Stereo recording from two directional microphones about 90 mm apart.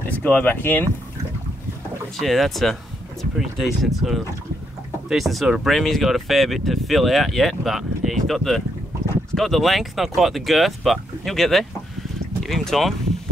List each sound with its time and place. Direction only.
0.2 s speech: 15° left (ahead or behind)
2.1 s speech: centre (ahead or behind)